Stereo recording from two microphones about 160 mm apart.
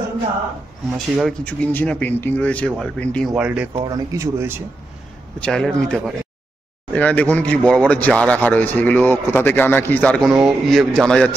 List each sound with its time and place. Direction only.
0.9 s a man's voice: centre (ahead or behind)
3.3 s speech: 10° right (ahead or behind)
3.9 s speech: 20° right (ahead or behind)
5.4 s a man's voice: 5° left (ahead or behind)